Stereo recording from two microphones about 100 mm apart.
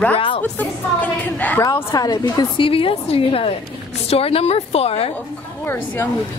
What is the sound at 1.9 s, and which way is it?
Speech, 40° left (ahead or behind).